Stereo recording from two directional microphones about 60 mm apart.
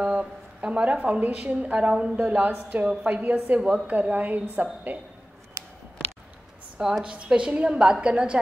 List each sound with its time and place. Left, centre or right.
0.0 s a woman's voice: centre
5.6 s a sound: right
6.8 s a woman's voice: centre